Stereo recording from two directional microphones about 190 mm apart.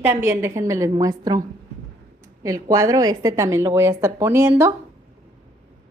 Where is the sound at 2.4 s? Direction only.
15° right (ahead or behind).